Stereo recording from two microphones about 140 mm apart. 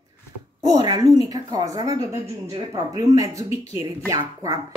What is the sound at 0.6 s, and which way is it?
A woman's voice, 30° right (ahead or behind).